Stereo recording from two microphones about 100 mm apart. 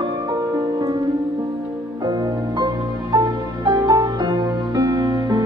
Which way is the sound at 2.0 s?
40° right (ahead or behind).